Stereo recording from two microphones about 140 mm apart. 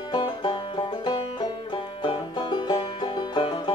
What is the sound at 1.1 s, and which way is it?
Banjo, 35° left (ahead or behind).